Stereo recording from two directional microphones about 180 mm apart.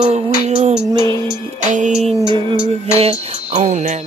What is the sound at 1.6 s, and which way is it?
Music, 40° right (ahead or behind).